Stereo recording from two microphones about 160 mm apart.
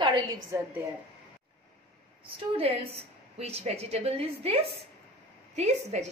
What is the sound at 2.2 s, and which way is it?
A woman's voice, 35° right (ahead or behind).